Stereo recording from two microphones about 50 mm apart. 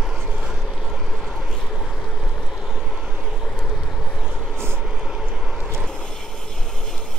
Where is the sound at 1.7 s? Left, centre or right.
Centre.